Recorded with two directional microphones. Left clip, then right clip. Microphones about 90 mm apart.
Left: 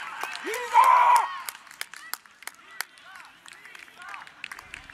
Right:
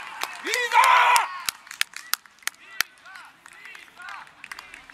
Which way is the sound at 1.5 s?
15° right (ahead or behind).